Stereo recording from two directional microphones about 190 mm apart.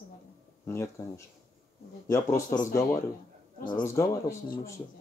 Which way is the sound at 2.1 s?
15° left (ahead or behind).